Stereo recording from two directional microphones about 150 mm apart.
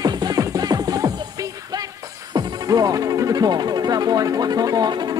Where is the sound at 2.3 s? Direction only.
25° right (ahead or behind).